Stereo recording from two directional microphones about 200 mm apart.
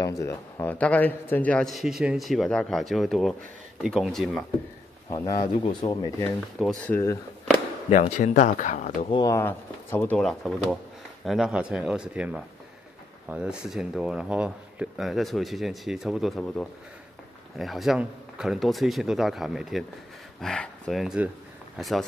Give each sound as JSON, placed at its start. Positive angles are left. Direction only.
{"t": 0.0, "sound": "a man's voice", "side_deg": 15}
{"t": 5.1, "sound": "speech", "side_deg": 15}
{"t": 6.6, "sound": "a man's voice", "side_deg": 0}
{"t": 7.9, "sound": "speech", "side_deg": 35}
{"t": 9.1, "sound": "a man's voice", "side_deg": 20}